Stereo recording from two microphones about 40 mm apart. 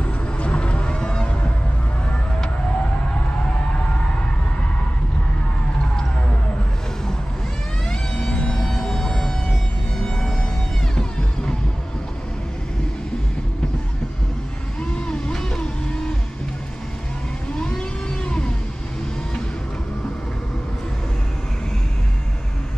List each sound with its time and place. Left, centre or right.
0.0 s a sound: left
7.9 s vehicle: left
8.6 s music: centre
11.0 s music: left
14.8 s music: left
17.6 s vehicle: left